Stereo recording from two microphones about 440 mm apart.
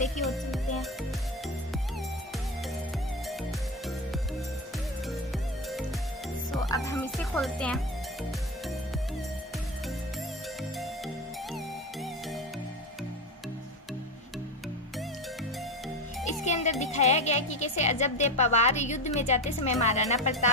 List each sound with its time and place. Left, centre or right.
0.2 s music: centre
5.3 s music: centre
11.5 s music: centre
16.4 s music: centre
16.8 s speech: centre